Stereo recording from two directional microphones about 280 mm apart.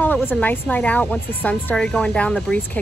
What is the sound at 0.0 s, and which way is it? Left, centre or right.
Speech, centre.